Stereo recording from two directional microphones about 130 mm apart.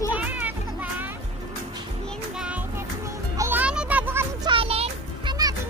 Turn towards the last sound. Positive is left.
turn(degrees=-35)  # may be behind; listen again after turning